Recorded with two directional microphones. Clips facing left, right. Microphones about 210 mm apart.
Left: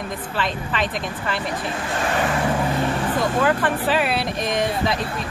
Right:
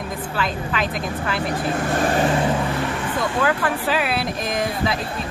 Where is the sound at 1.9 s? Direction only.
35° right (ahead or behind).